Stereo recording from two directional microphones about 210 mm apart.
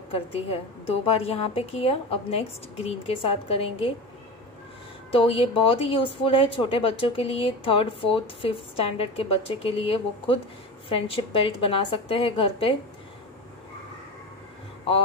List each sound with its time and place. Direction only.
0.1 s speech: 30° left (ahead or behind)
5.1 s speech: 25° left (ahead or behind)